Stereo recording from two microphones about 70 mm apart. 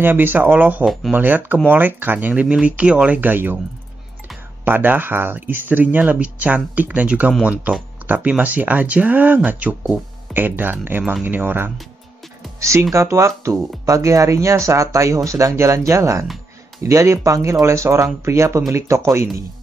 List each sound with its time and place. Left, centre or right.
0.0 s speech: right
3.2 s speech: right
4.6 s speech: right
12.5 s music: right
12.9 s speech: right